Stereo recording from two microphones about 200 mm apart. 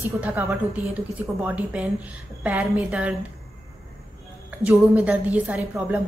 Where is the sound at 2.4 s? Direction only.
5° right (ahead or behind).